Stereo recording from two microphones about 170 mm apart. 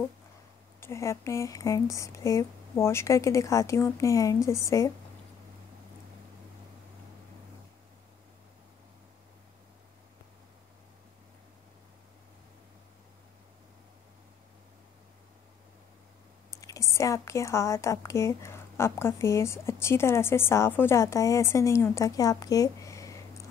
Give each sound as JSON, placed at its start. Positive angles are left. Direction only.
{"t": 0.7, "sound": "speech", "side_deg": 15}
{"t": 16.4, "sound": "a woman's voice", "side_deg": 20}